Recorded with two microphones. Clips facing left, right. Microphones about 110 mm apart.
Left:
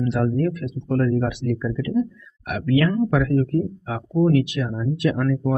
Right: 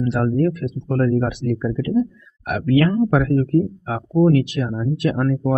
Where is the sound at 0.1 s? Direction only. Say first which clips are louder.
Right 3 dB; 35° right (ahead or behind).